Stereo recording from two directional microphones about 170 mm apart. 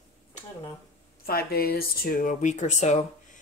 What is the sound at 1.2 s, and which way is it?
Speech, 60° left (ahead or behind).